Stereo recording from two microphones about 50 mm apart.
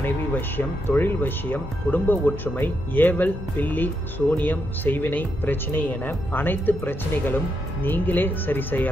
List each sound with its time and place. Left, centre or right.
0.0 s speech: left